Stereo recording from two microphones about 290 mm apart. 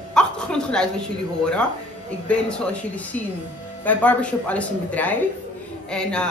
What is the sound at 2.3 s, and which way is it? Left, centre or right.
Speech, centre.